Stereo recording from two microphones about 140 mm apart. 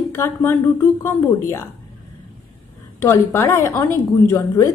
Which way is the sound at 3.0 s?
15° left (ahead or behind).